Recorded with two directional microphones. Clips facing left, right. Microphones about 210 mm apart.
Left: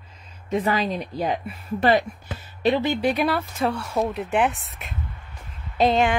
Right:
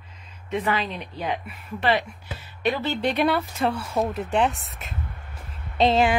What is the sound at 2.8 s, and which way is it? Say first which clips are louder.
Speech: left 3 dB; 10° left (ahead or behind).